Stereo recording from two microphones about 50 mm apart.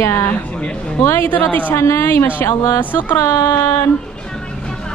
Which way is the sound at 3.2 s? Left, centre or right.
Left.